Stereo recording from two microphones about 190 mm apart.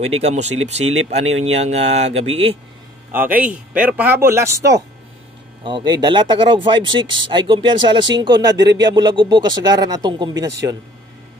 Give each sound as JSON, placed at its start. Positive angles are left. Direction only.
{"t": 0.0, "sound": "speech", "side_deg": -35}
{"t": 3.1, "sound": "a man's voice", "side_deg": -10}